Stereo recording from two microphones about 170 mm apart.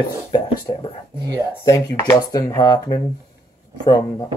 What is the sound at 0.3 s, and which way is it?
Speech, 25° left (ahead or behind).